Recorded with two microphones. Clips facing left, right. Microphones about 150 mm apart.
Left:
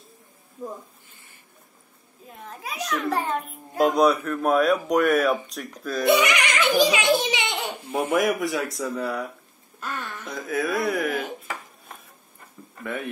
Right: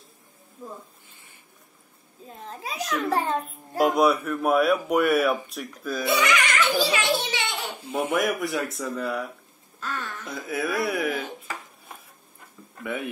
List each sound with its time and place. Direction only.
2.2 s a child's voice: 25° right (ahead or behind)
3.7 s speech: 5° right (ahead or behind)
6.0 s a child's voice: 20° left (ahead or behind)
7.9 s speech: centre (ahead or behind)
9.8 s throat clearing: 10° left (ahead or behind)
10.2 s speech: 5° right (ahead or behind)
12.7 s speech: 10° right (ahead or behind)